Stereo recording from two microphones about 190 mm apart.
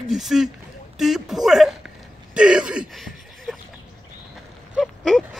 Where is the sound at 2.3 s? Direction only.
5° right (ahead or behind).